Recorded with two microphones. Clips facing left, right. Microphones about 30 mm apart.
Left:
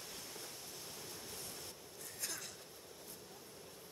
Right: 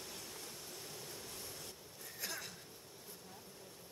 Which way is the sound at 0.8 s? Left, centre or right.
Centre.